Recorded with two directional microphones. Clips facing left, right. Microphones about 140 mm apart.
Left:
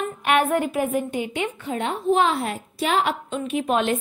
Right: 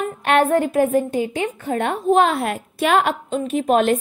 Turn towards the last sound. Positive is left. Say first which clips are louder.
# right 5 dB
turn(degrees=-45)  # may be behind; listen again after turning